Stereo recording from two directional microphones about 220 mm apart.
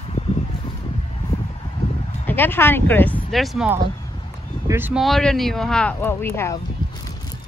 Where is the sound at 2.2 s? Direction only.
10° left (ahead or behind).